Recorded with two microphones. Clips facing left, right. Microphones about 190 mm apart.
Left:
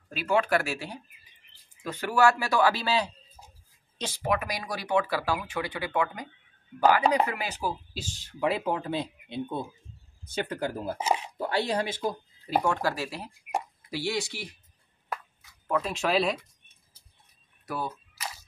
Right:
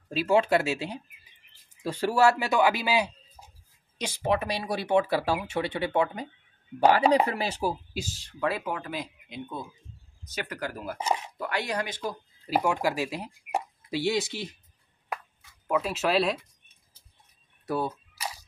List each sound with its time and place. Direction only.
0.1 s speech: 25° right (ahead or behind)
4.3 s speech: 30° right (ahead or behind)
7.2 s speech: 30° right (ahead or behind)
7.9 s speech: 5° right (ahead or behind)
8.3 s speech: 15° left (ahead or behind)
12.4 s speech: 5° right (ahead or behind); by 14.5 s 20° right (ahead or behind)
15.6 s speech: 5° right (ahead or behind)
17.6 s camera: 30° right (ahead or behind)